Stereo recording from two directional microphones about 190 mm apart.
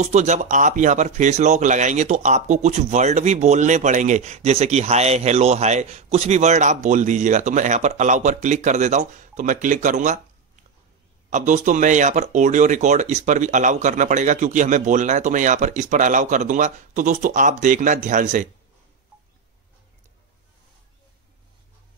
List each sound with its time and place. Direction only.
0.0 s speech: 40° right (ahead or behind)